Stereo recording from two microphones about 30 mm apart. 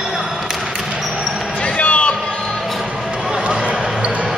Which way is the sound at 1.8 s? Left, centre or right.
Left.